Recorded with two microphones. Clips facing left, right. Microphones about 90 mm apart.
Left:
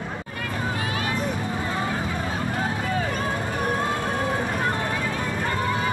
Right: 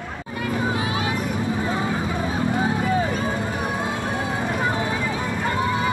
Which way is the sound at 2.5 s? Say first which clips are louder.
Right 4 dB; 10° right (ahead or behind).